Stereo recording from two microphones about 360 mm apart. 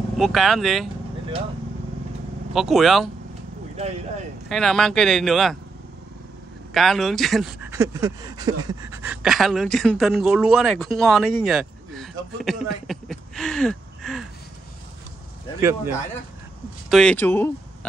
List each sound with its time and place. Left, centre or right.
0.2 s speech: centre
2.5 s speech: centre
3.7 s speech: centre
4.5 s speech: centre
6.7 s speech: centre
15.6 s speech: centre